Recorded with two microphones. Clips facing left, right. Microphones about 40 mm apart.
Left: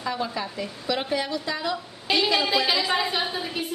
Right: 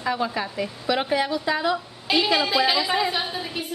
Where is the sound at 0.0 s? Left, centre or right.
Centre.